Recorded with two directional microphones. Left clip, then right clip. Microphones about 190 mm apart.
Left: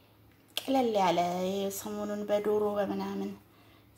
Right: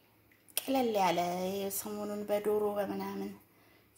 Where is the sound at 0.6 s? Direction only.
10° right (ahead or behind).